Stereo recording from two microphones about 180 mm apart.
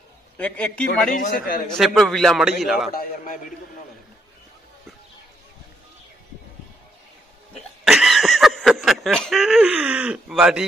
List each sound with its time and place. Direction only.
0.4 s a man's voice: 5° left (ahead or behind)
1.1 s a man's voice: 50° left (ahead or behind)
1.8 s a man's voice: centre (ahead or behind)
7.8 s speech: centre (ahead or behind)